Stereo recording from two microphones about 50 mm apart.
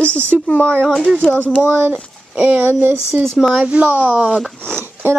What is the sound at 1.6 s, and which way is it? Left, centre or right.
A woman's voice, right.